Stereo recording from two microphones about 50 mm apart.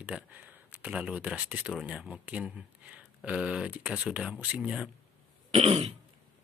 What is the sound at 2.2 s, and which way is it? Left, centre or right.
Speech, right.